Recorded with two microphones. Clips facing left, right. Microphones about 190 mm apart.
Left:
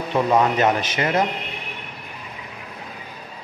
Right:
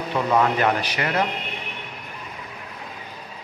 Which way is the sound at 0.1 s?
20° left (ahead or behind).